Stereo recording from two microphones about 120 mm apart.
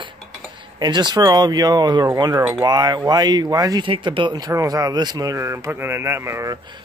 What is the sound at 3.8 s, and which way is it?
Speech, 45° right (ahead or behind).